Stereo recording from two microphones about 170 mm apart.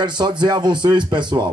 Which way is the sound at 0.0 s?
25° right (ahead or behind).